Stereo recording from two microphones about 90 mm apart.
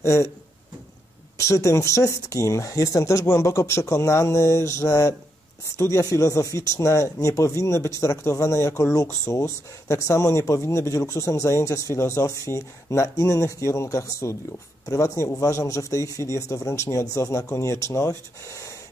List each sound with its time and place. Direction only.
0.0 s speech: 35° left (ahead or behind)
1.4 s speech: 35° left (ahead or behind)